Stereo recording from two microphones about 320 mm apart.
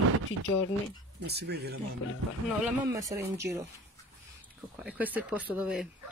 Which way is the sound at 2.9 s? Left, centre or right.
Centre.